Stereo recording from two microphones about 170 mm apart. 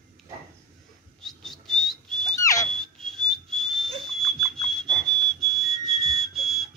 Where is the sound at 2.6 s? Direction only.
5° left (ahead or behind).